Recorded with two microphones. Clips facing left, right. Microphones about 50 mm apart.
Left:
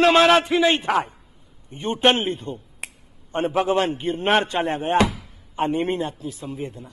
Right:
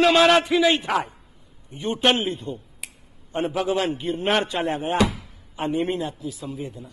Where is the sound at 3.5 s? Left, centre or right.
Left.